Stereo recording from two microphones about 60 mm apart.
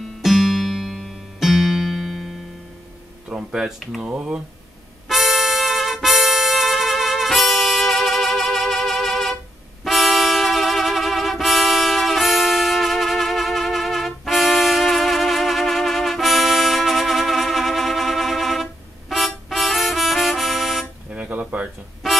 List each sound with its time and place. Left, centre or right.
0.0 s music: centre
3.3 s speech: centre
5.0 s music: centre
21.1 s dishes: right
22.0 s music: centre